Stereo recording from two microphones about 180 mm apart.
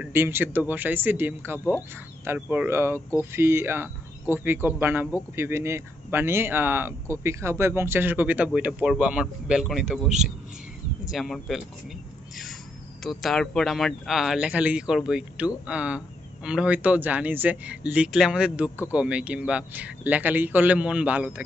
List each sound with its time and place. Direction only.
0.0 s speech: 15° right (ahead or behind)
13.0 s speech: centre (ahead or behind)